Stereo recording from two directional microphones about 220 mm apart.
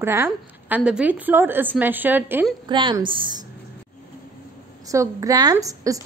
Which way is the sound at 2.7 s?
20° right (ahead or behind).